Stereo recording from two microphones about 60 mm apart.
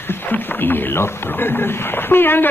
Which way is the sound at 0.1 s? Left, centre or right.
Left.